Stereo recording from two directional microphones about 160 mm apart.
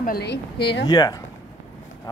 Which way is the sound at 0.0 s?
80° left.